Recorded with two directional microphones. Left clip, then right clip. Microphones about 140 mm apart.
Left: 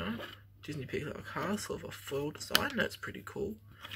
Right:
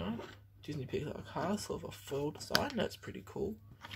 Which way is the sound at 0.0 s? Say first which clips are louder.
Left 3 dB; 25° right (ahead or behind).